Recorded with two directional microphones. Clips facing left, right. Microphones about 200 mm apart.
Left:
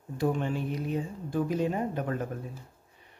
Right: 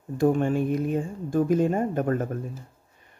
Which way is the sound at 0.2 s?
50° right (ahead or behind).